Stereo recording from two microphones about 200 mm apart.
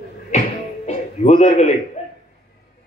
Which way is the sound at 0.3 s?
35° left (ahead or behind).